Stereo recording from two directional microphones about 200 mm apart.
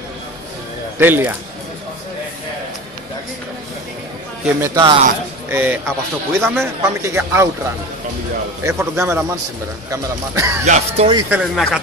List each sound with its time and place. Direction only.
0.9 s a man's voice: 10° right (ahead or behind)
4.6 s a man's voice: 15° right (ahead or behind)
8.6 s a man's voice: 15° right (ahead or behind)
10.6 s speech: 35° right (ahead or behind)
11.2 s speech: 5° right (ahead or behind)